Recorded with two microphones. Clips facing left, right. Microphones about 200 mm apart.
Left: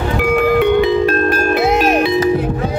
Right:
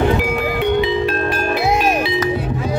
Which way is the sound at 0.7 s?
50° left (ahead or behind).